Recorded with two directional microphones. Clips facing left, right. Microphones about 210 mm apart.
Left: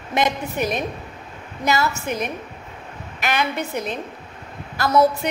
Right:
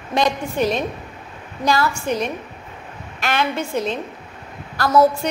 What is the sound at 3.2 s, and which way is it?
Speech, 15° left (ahead or behind).